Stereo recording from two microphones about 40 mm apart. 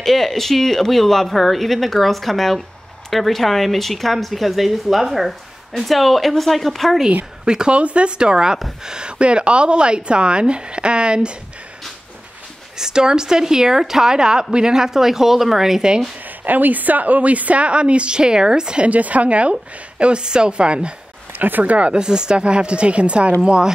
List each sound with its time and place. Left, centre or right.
0.0 s a woman's voice: centre
7.4 s speech: right
12.7 s a woman's voice: centre
16.4 s a woman's voice: right
18.9 s a woman's voice: right
21.4 s speech: right
21.7 s a woman's voice: right
22.0 s speech: centre